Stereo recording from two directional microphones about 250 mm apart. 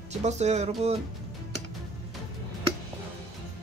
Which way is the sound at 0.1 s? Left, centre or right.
Right.